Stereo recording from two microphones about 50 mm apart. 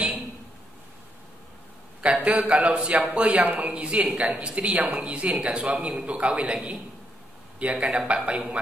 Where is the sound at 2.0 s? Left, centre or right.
Right.